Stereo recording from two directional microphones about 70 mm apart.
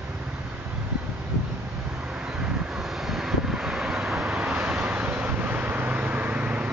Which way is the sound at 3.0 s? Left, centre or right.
Centre.